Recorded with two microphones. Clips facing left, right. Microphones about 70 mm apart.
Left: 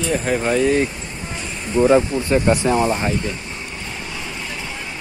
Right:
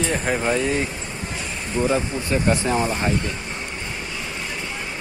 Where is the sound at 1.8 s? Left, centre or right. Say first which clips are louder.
Left 7 dB; left.